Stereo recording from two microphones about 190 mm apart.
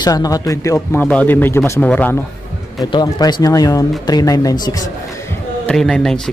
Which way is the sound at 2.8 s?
20° left (ahead or behind).